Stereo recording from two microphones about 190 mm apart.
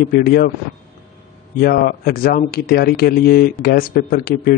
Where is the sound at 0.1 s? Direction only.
55° left (ahead or behind).